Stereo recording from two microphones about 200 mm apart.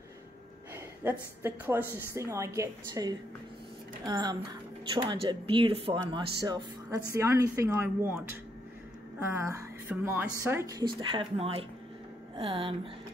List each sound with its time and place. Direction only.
1.4 s a woman's voice: 10° right (ahead or behind)
9.2 s a woman's voice: 15° right (ahead or behind)